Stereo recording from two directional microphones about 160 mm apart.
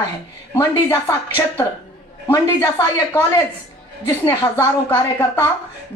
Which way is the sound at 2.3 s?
15° left (ahead or behind).